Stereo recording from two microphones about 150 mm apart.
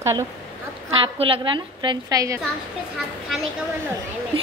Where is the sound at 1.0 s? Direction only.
35° right (ahead or behind).